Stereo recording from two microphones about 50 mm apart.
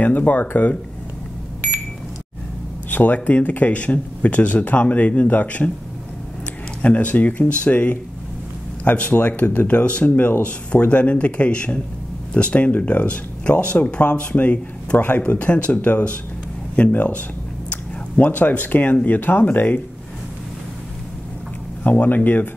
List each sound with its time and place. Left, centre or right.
0.0 s speech: left
2.9 s speech: left
6.8 s speech: left
21.8 s speech: left